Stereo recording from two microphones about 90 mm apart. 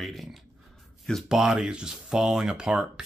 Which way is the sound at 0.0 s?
Centre (ahead or behind).